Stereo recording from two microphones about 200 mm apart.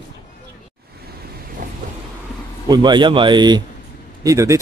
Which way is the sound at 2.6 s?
20° right (ahead or behind).